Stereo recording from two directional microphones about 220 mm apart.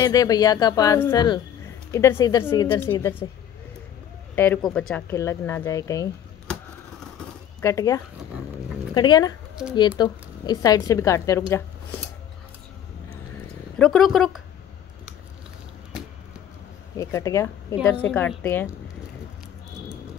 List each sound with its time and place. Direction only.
0.0 s speech: 15° left (ahead or behind)
4.4 s speech: 5° left (ahead or behind)
5.1 s speech: 15° left (ahead or behind)
6.5 s scissors: 5° left (ahead or behind)
7.6 s speech: 15° left (ahead or behind)
13.7 s speech: centre (ahead or behind)
16.9 s speech: 15° left (ahead or behind)